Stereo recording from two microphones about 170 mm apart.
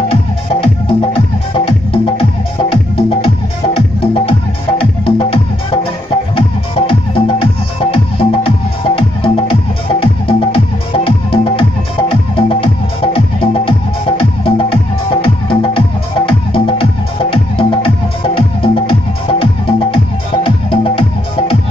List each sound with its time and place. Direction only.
0.1 s music: 35° left (ahead or behind)